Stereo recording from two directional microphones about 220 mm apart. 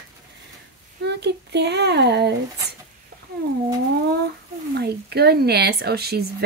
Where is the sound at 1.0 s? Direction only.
50° right (ahead or behind).